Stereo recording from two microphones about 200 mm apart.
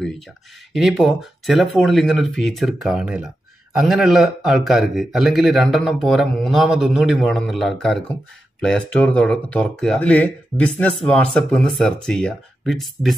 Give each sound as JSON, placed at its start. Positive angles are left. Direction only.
{"t": 0.7, "sound": "speech", "side_deg": 0}